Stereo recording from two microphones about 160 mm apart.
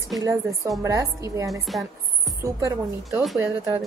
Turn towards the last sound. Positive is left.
turn(degrees=-15)  # may be behind; listen again after turning